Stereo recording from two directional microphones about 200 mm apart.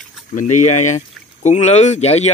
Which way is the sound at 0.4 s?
35° left (ahead or behind).